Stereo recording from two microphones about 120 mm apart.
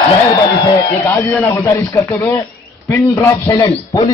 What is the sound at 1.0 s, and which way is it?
A man's voice, 15° left (ahead or behind).